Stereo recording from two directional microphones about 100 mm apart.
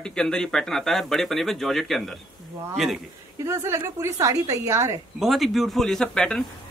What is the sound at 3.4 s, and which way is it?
A woman's voice, 25° right (ahead or behind).